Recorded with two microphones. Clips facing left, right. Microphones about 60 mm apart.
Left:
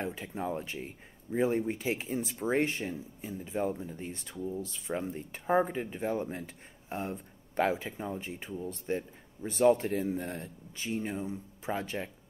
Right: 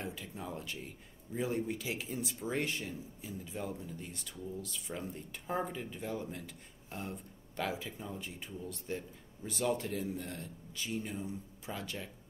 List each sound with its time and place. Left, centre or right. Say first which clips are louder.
0.0 s speech: left 7 dB; left